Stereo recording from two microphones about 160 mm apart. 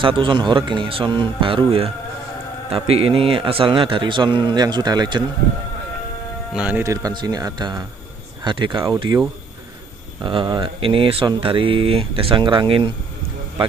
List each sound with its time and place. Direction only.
0.0 s speech: 30° right (ahead or behind)
6.5 s speech: 10° right (ahead or behind); by 8.9 s 30° right (ahead or behind)
10.2 s speech: 30° right (ahead or behind)